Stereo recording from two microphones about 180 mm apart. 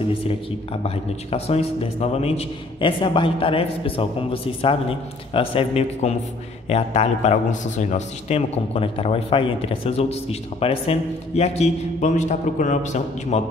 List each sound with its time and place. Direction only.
0.8 s a man's voice: 35° left (ahead or behind)